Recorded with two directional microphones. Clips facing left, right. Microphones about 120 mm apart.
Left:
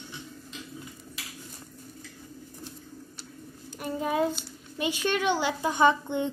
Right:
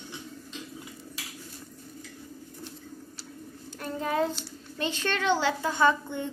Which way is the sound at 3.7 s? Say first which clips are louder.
Left 1 dB; 15° left (ahead or behind).